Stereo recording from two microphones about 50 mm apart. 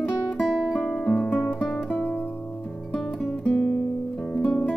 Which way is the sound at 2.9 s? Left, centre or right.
Centre.